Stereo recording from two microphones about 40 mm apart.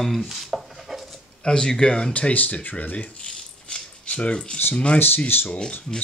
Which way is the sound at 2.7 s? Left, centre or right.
Left.